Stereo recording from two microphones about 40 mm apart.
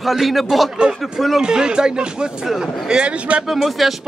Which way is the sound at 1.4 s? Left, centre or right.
Right.